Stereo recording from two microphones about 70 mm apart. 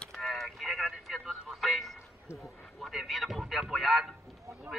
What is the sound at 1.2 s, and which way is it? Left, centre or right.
Music, centre.